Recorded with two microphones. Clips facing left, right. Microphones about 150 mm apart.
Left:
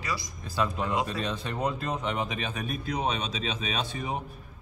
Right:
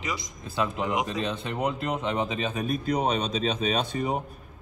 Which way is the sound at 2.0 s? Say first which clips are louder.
Right 3 dB; 30° right (ahead or behind).